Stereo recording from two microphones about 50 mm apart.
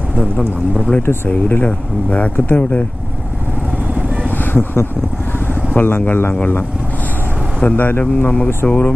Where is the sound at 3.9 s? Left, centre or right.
Right.